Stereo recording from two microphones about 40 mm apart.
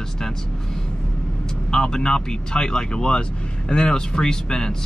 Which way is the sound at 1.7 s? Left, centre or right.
Centre.